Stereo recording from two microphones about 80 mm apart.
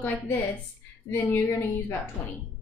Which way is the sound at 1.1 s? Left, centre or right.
Left.